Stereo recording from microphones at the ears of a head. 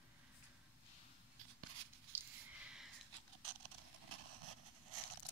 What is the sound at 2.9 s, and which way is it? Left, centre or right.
Vehicle, right.